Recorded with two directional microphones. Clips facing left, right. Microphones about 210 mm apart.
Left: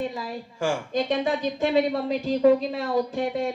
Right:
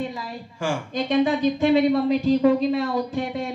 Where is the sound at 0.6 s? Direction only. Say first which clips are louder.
Left 1 dB; 45° left (ahead or behind).